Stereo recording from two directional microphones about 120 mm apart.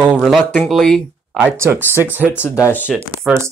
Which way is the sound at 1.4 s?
20° right (ahead or behind).